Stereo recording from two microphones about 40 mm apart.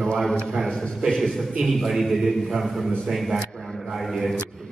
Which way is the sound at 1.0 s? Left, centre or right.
Centre.